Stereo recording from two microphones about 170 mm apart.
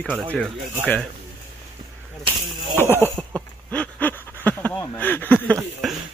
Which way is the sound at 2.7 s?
15° left (ahead or behind).